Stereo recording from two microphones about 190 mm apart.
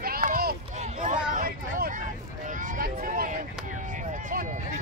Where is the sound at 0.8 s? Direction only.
40° right (ahead or behind).